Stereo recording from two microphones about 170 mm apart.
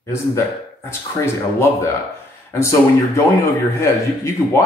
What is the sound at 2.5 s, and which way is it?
Speech, 15° left (ahead or behind).